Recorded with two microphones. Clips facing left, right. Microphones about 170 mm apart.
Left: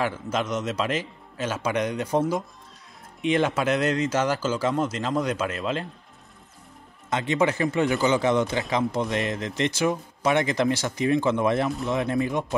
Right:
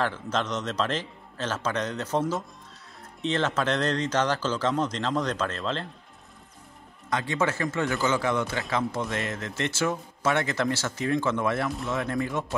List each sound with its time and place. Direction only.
0.0 s speech: 10° left (ahead or behind)
7.1 s speech: 20° left (ahead or behind)